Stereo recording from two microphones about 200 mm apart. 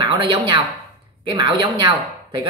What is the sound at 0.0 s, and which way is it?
Speech, 25° right (ahead or behind).